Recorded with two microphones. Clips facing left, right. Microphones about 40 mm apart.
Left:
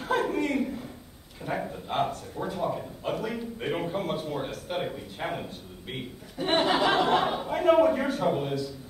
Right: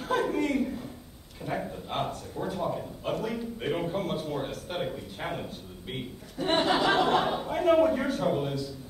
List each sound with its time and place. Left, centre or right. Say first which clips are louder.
0.0 s a man's voice: left 1 dB; centre